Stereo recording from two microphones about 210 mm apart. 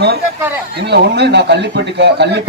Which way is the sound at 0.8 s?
50° right (ahead or behind).